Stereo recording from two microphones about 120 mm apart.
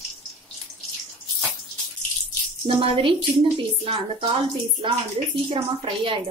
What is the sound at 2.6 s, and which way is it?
A woman's voice, 45° right (ahead or behind).